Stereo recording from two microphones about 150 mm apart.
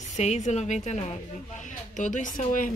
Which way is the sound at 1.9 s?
55° left (ahead or behind).